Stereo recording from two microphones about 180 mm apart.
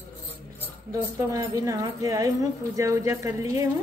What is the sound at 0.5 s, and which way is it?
A woman's voice, 15° right (ahead or behind).